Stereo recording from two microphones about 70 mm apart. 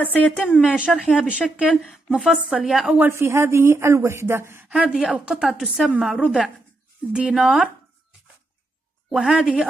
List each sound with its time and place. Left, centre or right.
0.0 s a woman's voice: left
0.7 s speech: centre
3.0 s speech: right
4.6 s speech: centre
9.1 s speech: centre